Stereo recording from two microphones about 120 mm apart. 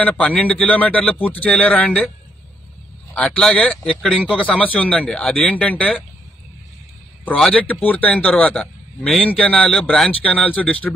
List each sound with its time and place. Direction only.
0.0 s a man's voice: 10° left (ahead or behind)
3.2 s a man's voice: 5° left (ahead or behind)
7.2 s a man's voice: 5° left (ahead or behind)